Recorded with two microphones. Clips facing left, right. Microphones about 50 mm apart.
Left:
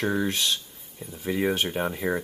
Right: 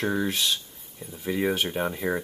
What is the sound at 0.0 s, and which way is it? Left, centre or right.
Speech, centre.